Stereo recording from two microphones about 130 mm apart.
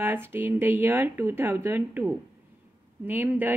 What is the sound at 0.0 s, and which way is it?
A woman's voice, 15° right (ahead or behind).